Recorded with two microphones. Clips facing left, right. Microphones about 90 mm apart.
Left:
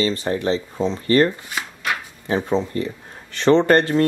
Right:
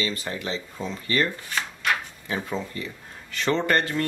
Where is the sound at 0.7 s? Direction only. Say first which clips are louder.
Left 10 dB; 25° left (ahead or behind).